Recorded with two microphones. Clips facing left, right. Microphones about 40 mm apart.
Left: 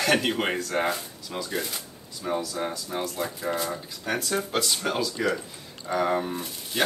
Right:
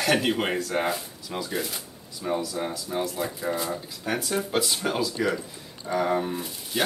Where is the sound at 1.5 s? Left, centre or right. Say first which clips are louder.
Even; centre.